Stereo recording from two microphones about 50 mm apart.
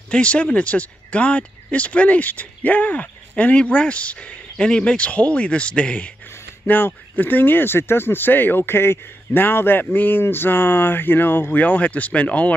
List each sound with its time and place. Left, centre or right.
0.1 s speech: left
6.7 s speech: left
11.6 s speech: left